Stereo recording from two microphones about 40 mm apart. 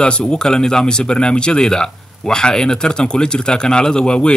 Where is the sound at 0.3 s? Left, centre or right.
Centre.